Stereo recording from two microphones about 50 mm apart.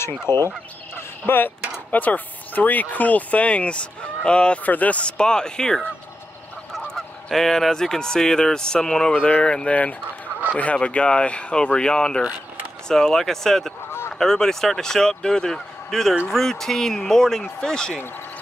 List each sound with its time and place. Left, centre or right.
0.3 s fowl: left
1.2 s speech: left
1.9 s speech: left
4.6 s speech: left; by 5.8 s centre
6.7 s goose: centre
10.6 s speech: left